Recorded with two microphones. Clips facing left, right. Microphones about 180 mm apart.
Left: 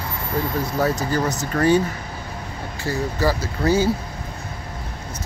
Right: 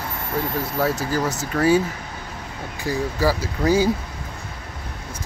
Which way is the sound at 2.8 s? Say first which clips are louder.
Even; 10° right (ahead or behind).